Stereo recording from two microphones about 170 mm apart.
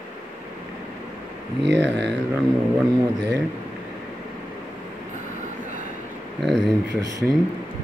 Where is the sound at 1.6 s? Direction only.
90° right.